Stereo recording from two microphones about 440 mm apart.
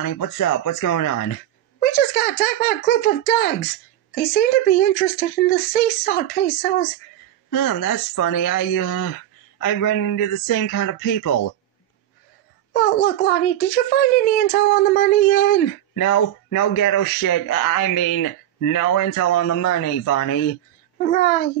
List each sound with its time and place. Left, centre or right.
0.0 s a man's voice: left
1.8 s speech: left
7.5 s a man's voice: left
12.7 s speech: left
15.9 s speech: left
21.1 s speech: left